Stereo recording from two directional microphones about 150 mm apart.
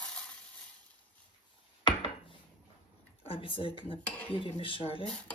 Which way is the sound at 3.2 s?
40° left (ahead or behind).